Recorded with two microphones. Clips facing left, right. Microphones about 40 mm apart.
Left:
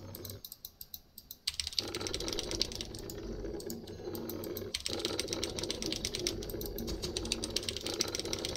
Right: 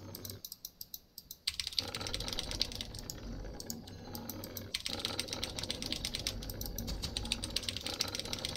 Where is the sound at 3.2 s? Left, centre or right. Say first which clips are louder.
Left 9 dB; centre.